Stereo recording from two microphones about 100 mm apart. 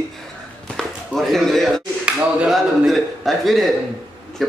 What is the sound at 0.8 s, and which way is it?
A man's voice, centre (ahead or behind).